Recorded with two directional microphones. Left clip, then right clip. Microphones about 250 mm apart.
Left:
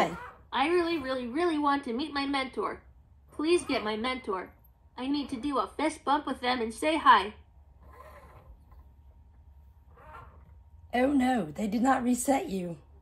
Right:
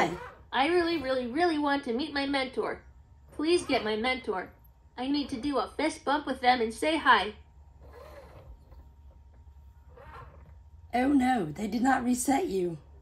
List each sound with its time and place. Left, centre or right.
0.5 s a woman's voice: centre
11.2 s a woman's voice: left